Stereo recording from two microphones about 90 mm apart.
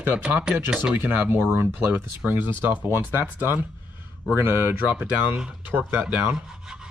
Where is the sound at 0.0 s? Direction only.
20° right (ahead or behind).